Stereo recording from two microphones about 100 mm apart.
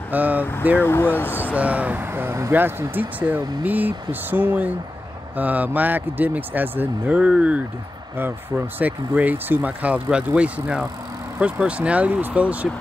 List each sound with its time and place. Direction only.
0.1 s speech: 15° right (ahead or behind)
0.7 s speech: 25° left (ahead or behind)
1.3 s speech: 15° right (ahead or behind)